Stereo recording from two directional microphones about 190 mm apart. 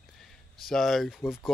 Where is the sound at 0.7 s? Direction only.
Centre (ahead or behind).